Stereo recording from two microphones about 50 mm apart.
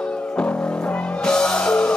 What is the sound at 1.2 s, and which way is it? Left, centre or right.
Music, centre.